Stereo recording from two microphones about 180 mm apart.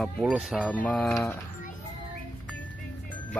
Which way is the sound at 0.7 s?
5° left (ahead or behind).